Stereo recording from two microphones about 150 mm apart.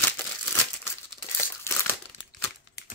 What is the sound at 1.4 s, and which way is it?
Crumpling, 15° left (ahead or behind).